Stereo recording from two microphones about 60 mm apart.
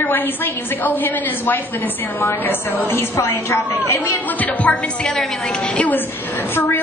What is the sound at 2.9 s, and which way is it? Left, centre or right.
A woman's voice, left.